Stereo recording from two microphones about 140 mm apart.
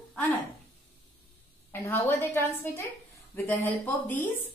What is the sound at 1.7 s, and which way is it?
A woman's voice, 15° left (ahead or behind).